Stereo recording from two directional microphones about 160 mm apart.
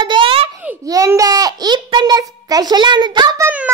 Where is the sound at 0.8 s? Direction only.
20° right (ahead or behind).